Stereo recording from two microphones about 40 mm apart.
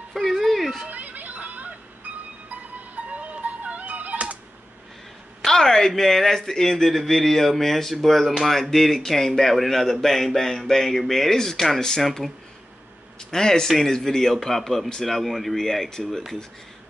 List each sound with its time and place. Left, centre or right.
0.1 s a sound: centre
0.8 s music: right
3.1 s music: right
5.5 s speech: centre